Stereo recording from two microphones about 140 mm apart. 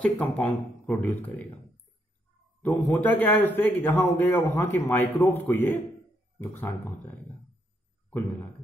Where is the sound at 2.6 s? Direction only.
15° left (ahead or behind).